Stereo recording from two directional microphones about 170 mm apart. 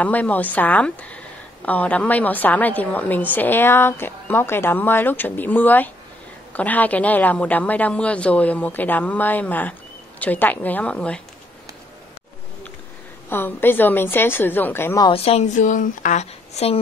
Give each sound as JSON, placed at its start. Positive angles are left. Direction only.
{"t": 0.0, "sound": "speech", "side_deg": 10}
{"t": 13.3, "sound": "speech", "side_deg": 10}
{"t": 15.0, "sound": "a woman's voice", "side_deg": 35}